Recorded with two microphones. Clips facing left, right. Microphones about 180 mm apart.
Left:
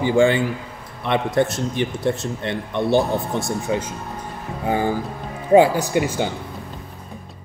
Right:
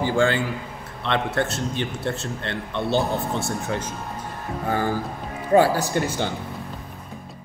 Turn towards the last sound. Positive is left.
turn(degrees=15)  # may be behind; listen again after turning